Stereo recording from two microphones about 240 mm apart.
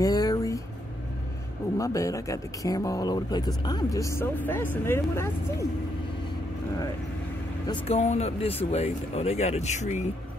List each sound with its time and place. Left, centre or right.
0.0 s a sound: centre
1.8 s speech: centre
7.6 s speech: left